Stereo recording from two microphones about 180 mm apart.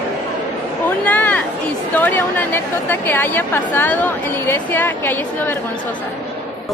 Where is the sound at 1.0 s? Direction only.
10° left (ahead or behind).